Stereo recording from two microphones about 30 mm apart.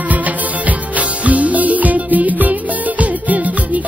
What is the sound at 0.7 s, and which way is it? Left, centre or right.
Music, right.